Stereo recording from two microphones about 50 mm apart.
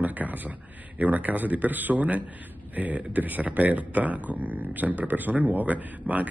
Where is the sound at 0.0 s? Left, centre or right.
Right.